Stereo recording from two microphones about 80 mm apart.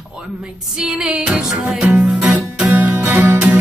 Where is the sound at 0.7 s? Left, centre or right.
Centre.